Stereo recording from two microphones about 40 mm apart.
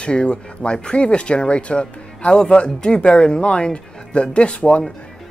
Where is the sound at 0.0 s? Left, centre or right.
Left.